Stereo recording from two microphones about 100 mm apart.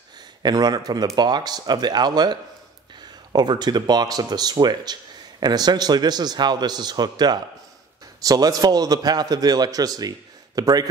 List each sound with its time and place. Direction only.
0.4 s speech: 45° right (ahead or behind)
3.3 s a man's voice: 45° right (ahead or behind)